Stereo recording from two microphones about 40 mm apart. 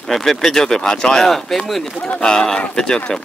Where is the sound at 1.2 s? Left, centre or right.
Centre.